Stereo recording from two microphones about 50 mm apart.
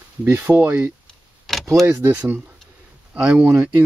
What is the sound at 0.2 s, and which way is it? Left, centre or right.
Speech, right.